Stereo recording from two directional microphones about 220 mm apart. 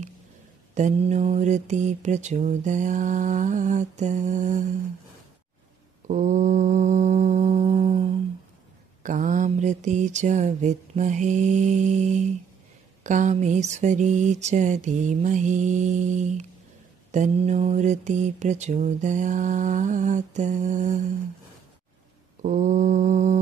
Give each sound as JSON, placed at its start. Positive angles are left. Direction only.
{"t": 0.7, "sound": "mantra", "side_deg": -30}
{"t": 6.0, "sound": "mantra", "side_deg": -35}
{"t": 22.4, "sound": "mantra", "side_deg": -35}